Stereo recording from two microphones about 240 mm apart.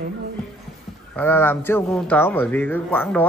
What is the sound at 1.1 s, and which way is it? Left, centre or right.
Speech, centre.